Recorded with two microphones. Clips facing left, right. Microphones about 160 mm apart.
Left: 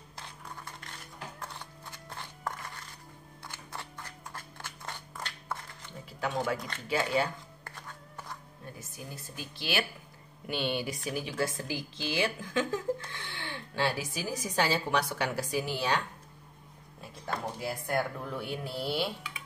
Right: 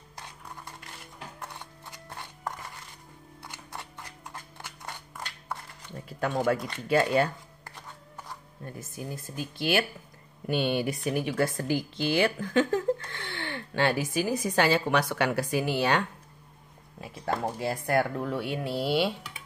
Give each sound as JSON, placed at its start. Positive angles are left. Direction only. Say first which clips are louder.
{"t": 1.5, "sound": "a sound", "louder": "right 1 dB", "side_deg": -15}
{"t": 3.4, "sound": "scissors", "louder": "right 1 dB", "side_deg": -15}
{"t": 6.2, "sound": "a woman's voice", "louder": "right 5 dB", "side_deg": -55}
{"t": 8.7, "sound": "a woman's voice", "louder": "right 9 dB", "side_deg": -50}
{"t": 17.6, "sound": "speech", "louder": "right 5 dB", "side_deg": -75}